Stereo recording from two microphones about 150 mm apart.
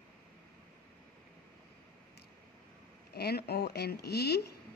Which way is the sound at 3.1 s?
90° left.